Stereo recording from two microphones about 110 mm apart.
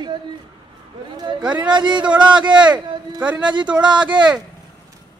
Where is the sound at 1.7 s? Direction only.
45° right (ahead or behind).